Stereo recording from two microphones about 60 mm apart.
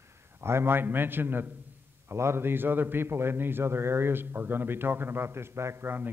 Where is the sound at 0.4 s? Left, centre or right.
Right.